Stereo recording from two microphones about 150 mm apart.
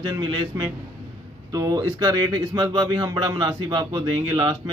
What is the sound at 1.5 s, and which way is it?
Speech, 25° right (ahead or behind).